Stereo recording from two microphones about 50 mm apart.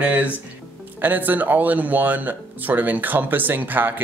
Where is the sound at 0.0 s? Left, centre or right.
Right.